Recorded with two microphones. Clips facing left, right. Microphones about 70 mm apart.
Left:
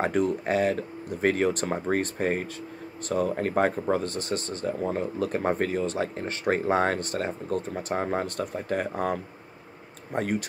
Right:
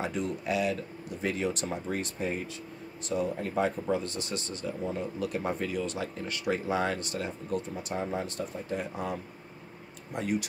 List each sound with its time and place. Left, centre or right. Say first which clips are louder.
0.0 s speech: left 7 dB; left
3.9 s speech: left 4 dB; left